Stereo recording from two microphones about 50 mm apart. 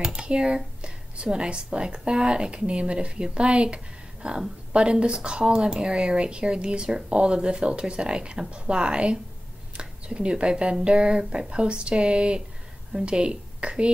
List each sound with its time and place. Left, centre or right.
0.0 s a woman's voice: centre